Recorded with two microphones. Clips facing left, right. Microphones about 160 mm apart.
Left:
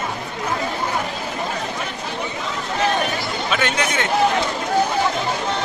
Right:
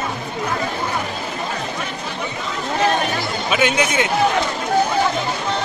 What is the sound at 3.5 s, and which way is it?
Speech, 10° right (ahead or behind).